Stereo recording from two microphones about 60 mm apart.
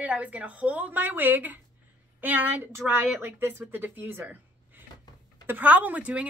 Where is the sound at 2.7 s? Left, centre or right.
Right.